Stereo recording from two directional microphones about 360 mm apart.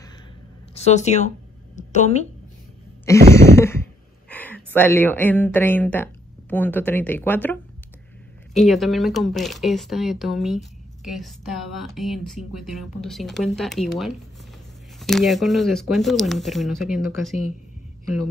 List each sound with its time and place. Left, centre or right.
0.7 s speech: centre
1.8 s a sound: centre
3.1 s a woman's voice: centre
8.6 s a woman's voice: centre